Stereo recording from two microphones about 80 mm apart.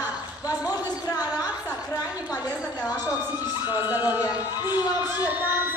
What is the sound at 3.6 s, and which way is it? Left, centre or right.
Children shouting, right.